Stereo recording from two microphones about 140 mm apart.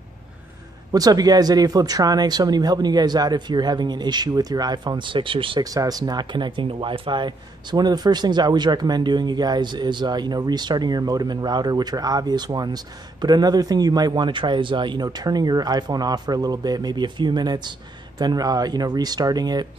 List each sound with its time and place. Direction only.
0.9 s speech: 25° right (ahead or behind)
5.7 s speech: 25° right (ahead or behind)